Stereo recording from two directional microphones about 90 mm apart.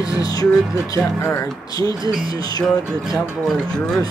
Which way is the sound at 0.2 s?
45° left (ahead or behind).